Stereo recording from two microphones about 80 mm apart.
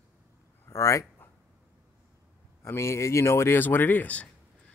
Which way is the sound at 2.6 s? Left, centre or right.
Left.